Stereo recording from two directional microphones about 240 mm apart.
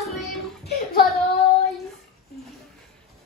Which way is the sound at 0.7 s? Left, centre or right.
Left.